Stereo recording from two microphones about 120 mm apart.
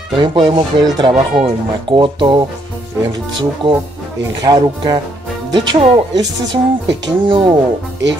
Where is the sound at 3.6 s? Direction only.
45° right (ahead or behind).